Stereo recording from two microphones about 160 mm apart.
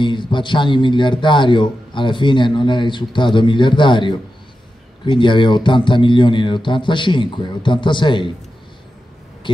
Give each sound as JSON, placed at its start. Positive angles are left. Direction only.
{"t": 0.0, "sound": "a man's voice", "side_deg": 30}